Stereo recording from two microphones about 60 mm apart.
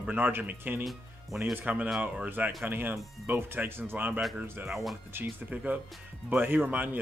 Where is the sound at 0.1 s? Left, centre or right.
Right.